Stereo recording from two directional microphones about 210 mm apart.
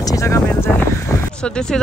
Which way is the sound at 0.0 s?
15° left (ahead or behind).